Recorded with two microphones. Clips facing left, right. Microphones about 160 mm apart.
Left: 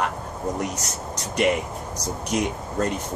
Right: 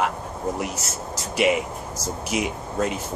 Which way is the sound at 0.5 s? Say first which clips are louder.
Left 1 dB; 5° right (ahead or behind).